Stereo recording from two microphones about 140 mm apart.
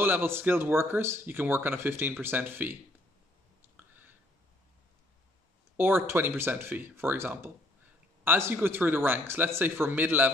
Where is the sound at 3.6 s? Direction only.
15° right (ahead or behind).